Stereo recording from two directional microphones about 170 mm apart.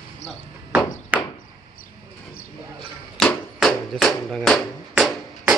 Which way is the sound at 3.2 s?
5° left (ahead or behind).